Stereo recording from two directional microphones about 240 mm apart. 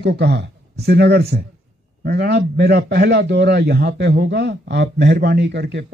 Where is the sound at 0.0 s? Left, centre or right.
Right.